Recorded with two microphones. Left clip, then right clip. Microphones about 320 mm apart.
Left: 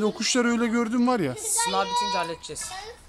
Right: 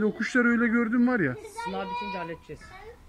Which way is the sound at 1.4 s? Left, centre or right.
Left.